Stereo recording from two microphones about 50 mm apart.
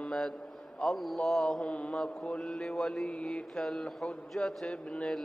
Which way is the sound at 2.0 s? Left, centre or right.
Centre.